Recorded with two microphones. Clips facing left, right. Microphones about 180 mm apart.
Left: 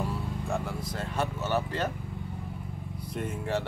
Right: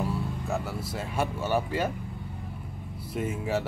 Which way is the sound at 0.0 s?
5° right (ahead or behind).